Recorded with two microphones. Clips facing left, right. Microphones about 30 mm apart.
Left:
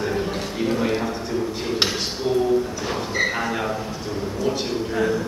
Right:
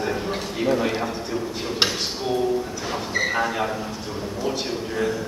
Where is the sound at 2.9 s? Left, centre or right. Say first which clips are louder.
Right 1 dB; centre.